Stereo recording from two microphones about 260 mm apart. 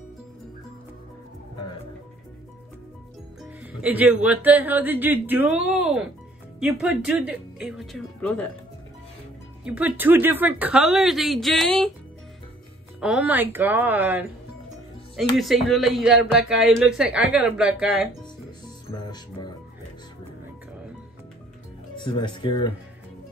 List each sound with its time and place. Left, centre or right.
3.8 s speech: centre
9.7 s speech: centre
13.0 s speech: centre
22.0 s speech: centre